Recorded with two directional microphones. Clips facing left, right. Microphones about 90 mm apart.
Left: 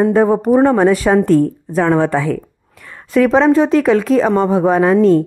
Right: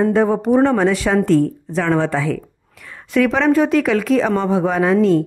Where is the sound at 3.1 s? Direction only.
30° left (ahead or behind).